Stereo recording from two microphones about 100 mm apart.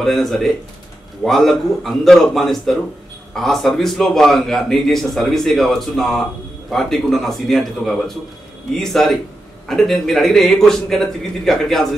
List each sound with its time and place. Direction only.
0.0 s a man's voice: centre (ahead or behind)